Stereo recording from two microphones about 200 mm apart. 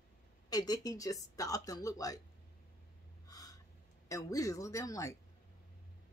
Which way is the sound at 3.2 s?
20° left (ahead or behind).